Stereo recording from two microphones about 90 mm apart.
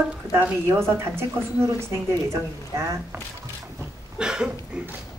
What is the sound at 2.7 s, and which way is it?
Speech, 40° right (ahead or behind).